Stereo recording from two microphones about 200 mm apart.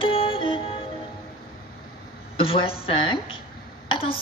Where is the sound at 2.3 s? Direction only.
25° left (ahead or behind).